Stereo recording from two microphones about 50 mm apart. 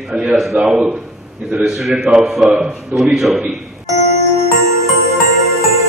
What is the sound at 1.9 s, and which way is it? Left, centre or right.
A man's voice, centre.